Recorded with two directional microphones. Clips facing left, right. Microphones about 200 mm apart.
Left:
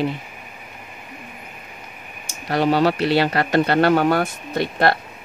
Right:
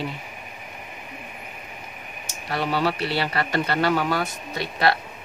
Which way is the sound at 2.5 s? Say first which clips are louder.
Left 7 dB; 45° left (ahead or behind).